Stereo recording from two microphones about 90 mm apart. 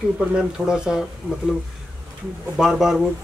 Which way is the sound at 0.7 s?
10° right (ahead or behind).